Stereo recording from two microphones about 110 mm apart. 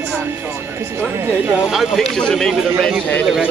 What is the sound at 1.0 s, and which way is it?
Speech, 15° right (ahead or behind).